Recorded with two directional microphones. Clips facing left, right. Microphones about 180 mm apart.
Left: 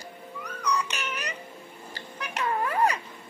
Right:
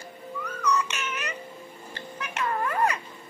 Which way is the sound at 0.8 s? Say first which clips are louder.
Right 1 dB; 35° left (ahead or behind).